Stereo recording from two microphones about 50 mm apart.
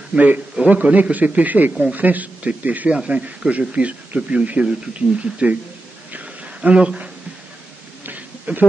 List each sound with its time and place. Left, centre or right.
0.1 s a man's voice: right
6.1 s a sound: right
8.5 s a man's voice: right